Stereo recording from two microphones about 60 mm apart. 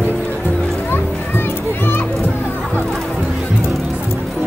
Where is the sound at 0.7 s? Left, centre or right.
Left.